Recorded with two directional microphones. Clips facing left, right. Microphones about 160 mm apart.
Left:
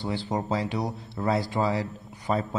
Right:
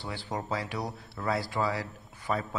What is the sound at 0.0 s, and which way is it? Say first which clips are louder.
A man's voice: left 7 dB; 20° left (ahead or behind).